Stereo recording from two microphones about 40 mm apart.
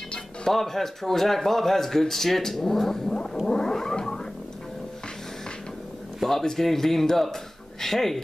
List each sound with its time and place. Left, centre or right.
0.5 s speech: centre
3.4 s a sound: centre
6.1 s speech: centre